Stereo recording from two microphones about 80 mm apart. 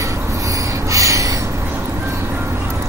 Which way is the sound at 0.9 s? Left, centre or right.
Right.